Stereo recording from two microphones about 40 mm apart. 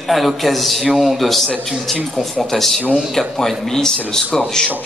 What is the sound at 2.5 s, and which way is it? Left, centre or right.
Speech, centre.